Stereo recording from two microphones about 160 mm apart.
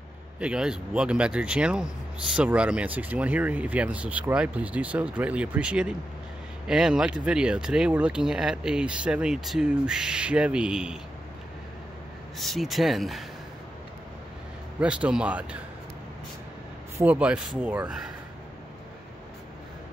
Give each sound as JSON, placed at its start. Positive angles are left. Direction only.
{"t": 0.4, "sound": "speech", "side_deg": -5}
{"t": 12.4, "sound": "speech", "side_deg": 0}
{"t": 14.8, "sound": "speech", "side_deg": -5}
{"t": 17.0, "sound": "speech", "side_deg": -10}